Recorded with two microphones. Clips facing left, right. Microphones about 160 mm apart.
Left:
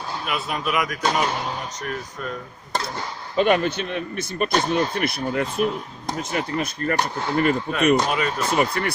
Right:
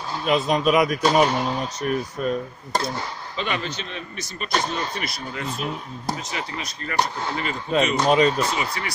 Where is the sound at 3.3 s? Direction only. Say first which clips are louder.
Left 10 dB; 50° left (ahead or behind).